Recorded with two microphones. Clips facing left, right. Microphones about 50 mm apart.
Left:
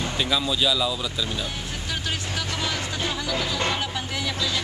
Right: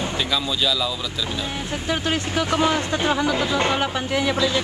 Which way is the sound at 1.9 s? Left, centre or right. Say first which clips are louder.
Right 7 dB; right.